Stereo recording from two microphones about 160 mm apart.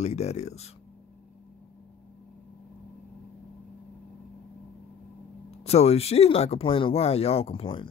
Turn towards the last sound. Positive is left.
turn(degrees=35)  # may be behind; listen again after turning